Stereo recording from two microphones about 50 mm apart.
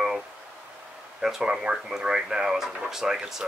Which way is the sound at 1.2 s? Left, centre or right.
Centre.